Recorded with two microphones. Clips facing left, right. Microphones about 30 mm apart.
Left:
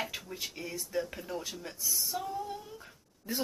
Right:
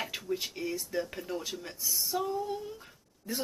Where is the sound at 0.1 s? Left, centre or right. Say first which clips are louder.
Right 5 dB; right.